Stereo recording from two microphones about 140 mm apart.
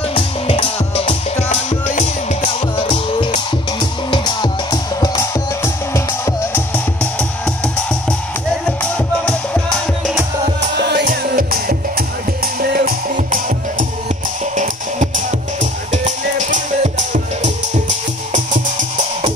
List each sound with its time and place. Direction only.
0.1 s music: 45° left (ahead or behind)
4.1 s music: 30° left (ahead or behind); by 7.2 s 15° left (ahead or behind)
8.9 s music: 10° left (ahead or behind)
11.1 s music: 90° right
12.7 s music: 85° right
14.6 s music: 60° right (ahead or behind)